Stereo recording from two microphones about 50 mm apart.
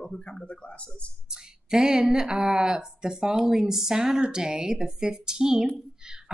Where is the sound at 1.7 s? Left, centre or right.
Centre.